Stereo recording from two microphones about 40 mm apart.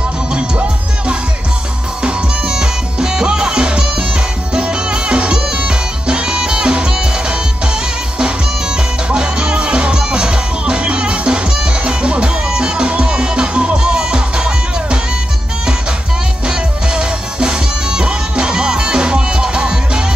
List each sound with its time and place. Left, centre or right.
2.0 s music: right
9.1 s music: right
16.4 s music: right